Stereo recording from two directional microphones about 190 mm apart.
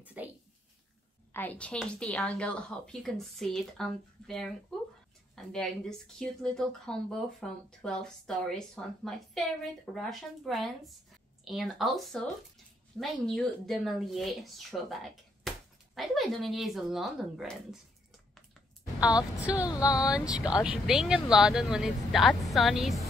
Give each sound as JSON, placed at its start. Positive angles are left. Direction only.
{"t": 0.0, "sound": "speech", "side_deg": -10}
{"t": 1.3, "sound": "speech", "side_deg": 10}
{"t": 19.4, "sound": "speech", "side_deg": -5}
{"t": 19.7, "sound": "speech", "side_deg": 20}
{"t": 20.6, "sound": "speech", "side_deg": -5}